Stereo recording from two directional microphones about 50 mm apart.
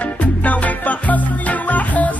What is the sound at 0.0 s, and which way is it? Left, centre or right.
Music, left.